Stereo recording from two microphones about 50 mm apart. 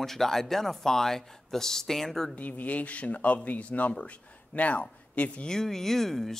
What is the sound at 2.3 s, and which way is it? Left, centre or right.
A man's voice, left.